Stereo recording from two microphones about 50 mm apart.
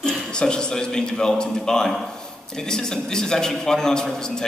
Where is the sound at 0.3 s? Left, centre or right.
Centre.